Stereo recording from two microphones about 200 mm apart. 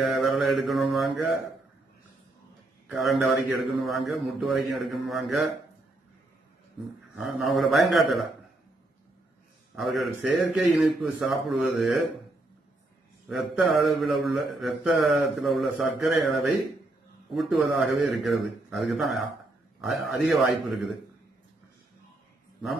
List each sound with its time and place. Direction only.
0.0 s mantra: centre (ahead or behind)
3.0 s mantra: centre (ahead or behind)
7.2 s mantra: centre (ahead or behind)
9.8 s mantra: centre (ahead or behind)
13.3 s mantra: centre (ahead or behind)
17.3 s mantra: centre (ahead or behind)